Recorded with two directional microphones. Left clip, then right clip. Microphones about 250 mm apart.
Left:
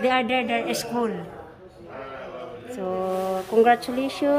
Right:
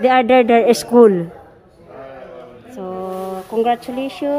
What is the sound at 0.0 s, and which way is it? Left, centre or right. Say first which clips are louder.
A man's voice: right 10 dB; centre.